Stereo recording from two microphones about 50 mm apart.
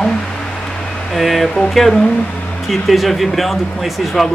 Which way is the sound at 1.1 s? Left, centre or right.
Centre.